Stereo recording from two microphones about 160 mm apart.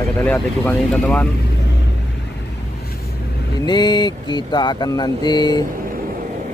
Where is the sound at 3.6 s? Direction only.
25° left (ahead or behind).